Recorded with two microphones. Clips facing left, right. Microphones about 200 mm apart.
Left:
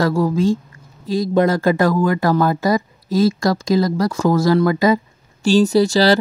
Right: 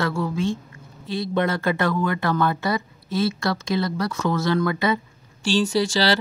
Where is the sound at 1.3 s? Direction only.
35° left (ahead or behind).